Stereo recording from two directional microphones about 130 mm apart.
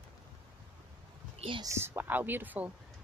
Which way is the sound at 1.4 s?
40° right (ahead or behind).